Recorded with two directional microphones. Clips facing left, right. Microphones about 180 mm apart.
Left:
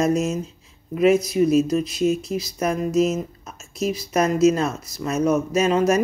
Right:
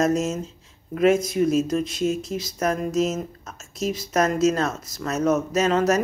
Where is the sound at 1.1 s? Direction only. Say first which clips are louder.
Left 2 dB; 50° right (ahead or behind).